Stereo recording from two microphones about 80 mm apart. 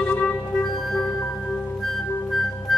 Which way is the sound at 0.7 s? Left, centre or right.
Centre.